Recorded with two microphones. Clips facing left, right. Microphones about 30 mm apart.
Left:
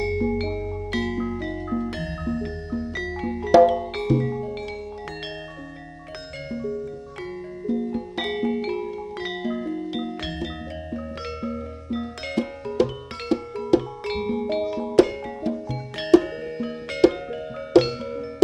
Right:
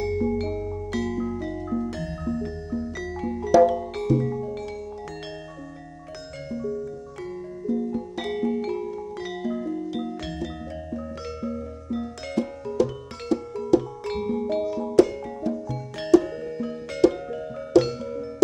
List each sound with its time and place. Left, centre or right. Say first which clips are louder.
0.0 s music: left 1 dB; left
6.5 s music: even; left